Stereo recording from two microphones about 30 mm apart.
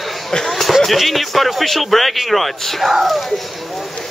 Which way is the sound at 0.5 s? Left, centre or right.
Centre.